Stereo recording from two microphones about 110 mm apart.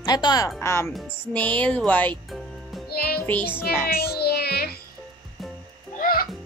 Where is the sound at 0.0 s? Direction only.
40° left (ahead or behind).